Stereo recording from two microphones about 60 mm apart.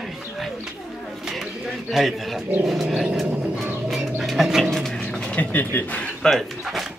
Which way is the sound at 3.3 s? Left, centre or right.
Right.